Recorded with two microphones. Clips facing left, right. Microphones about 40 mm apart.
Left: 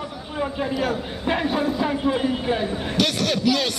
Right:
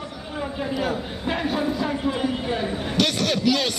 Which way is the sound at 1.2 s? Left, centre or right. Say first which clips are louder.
Left 2 dB; centre.